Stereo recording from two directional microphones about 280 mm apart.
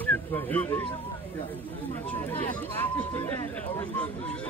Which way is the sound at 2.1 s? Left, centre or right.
Centre.